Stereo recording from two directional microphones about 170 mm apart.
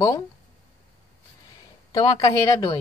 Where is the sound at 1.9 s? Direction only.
20° left (ahead or behind).